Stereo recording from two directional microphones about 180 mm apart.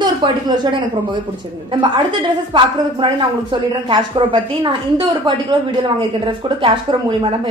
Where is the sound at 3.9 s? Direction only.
30° right (ahead or behind).